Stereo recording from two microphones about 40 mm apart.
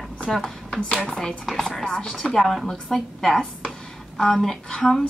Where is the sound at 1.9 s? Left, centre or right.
Centre.